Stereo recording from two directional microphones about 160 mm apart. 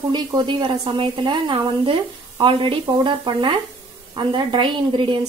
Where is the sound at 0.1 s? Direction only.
30° right (ahead or behind).